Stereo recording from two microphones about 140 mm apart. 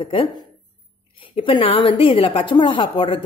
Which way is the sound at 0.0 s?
40° left (ahead or behind).